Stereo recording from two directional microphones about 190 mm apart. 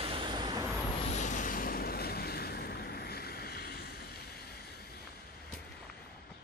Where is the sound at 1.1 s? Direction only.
40° left (ahead or behind); by 5.0 s 55° left (ahead or behind).